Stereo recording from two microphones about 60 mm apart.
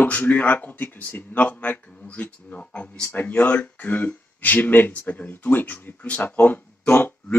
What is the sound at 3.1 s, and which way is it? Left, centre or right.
Speech, left.